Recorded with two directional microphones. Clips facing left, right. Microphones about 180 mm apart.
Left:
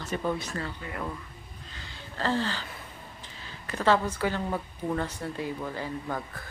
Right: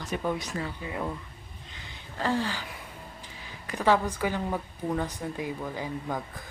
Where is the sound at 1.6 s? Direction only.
20° right (ahead or behind).